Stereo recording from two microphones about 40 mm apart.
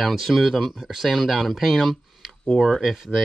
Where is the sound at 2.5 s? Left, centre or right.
Left.